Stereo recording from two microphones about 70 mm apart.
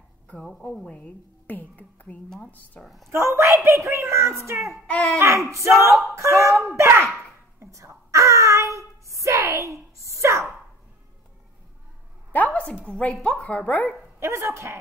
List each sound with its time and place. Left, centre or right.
0.4 s a woman's voice: centre; by 2.1 s left
2.2 s a woman's voice: centre
3.1 s speech: right
4.8 s a woman's voice: centre
5.2 s speech: right
6.8 s a sound: right
12.3 s a sound: left
12.8 s a woman's voice: centre
14.2 s speech: right